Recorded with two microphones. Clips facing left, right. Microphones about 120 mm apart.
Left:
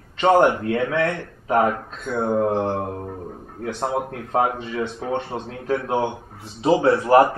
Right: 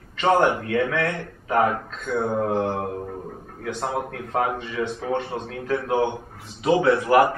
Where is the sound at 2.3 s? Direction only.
Centre (ahead or behind).